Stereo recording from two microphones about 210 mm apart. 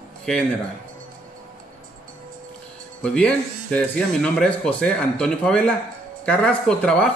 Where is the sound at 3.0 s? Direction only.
5° left (ahead or behind).